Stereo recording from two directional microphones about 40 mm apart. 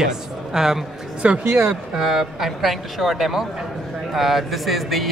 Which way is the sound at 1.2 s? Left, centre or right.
Right.